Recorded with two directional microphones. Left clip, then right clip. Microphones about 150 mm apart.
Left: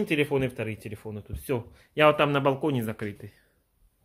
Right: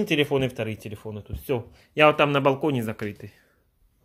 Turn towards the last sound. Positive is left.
turn(degrees=-10)  # may be behind; listen again after turning